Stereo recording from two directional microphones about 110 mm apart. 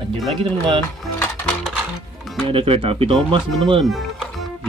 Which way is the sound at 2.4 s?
55° right (ahead or behind).